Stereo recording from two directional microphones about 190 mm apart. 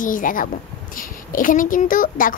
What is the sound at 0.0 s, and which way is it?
Speech, 45° left (ahead or behind).